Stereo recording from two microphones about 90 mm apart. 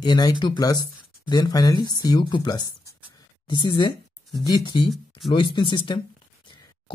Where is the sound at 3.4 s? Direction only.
60° left (ahead or behind).